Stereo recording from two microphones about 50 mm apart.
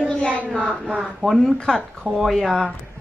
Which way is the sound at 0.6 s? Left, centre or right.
Centre.